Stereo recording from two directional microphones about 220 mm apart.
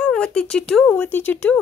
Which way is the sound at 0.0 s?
5° left (ahead or behind).